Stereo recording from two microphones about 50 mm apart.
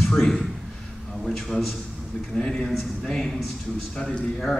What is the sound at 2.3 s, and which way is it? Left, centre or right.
A man's voice, centre.